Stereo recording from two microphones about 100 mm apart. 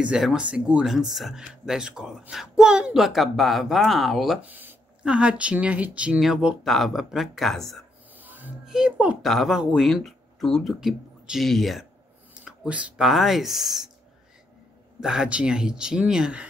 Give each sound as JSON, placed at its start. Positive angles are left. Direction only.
{"t": 0.0, "sound": "speech", "side_deg": -5}
{"t": 4.4, "sound": "speech", "side_deg": -15}
{"t": 8.1, "sound": "a sound", "side_deg": -15}
{"t": 8.6, "sound": "speech", "side_deg": -10}
{"t": 9.2, "sound": "speech", "side_deg": 0}
{"t": 12.4, "sound": "speech", "side_deg": -10}
{"t": 15.0, "sound": "speech", "side_deg": -5}